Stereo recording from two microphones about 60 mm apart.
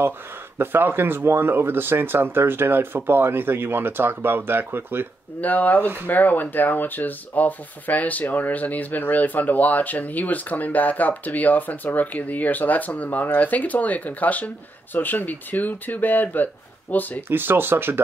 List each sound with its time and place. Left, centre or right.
0.6 s speech: right
5.4 s speech: left
17.3 s speech: right